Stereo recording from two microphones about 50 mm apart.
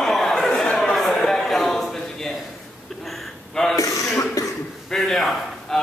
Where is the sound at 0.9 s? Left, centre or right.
Centre.